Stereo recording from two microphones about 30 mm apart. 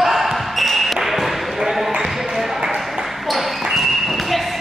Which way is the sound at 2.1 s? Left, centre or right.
Centre.